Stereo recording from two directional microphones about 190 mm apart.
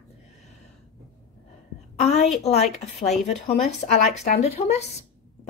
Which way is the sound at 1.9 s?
35° left (ahead or behind).